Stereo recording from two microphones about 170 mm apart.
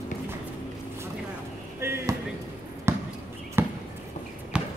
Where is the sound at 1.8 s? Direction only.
15° right (ahead or behind).